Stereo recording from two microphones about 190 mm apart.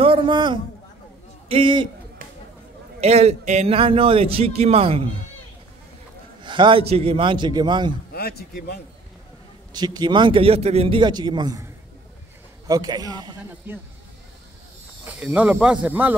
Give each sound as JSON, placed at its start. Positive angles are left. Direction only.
{"t": 0.0, "sound": "a man's voice", "side_deg": -25}
{"t": 3.0, "sound": "a man's voice", "side_deg": -35}
{"t": 6.4, "sound": "a man's voice", "side_deg": -25}
{"t": 8.1, "sound": "a man's voice", "side_deg": 55}
{"t": 9.7, "sound": "a man's voice", "side_deg": -20}
{"t": 13.7, "sound": "speech", "side_deg": -10}
{"t": 15.0, "sound": "speech", "side_deg": -10}